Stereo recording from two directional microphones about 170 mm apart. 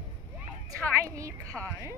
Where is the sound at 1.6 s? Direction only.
5° left (ahead or behind).